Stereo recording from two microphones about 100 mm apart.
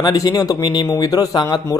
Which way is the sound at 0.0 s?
40° left (ahead or behind).